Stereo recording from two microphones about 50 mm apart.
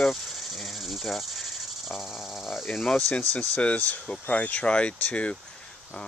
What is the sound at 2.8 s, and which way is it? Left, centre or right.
Speech, left.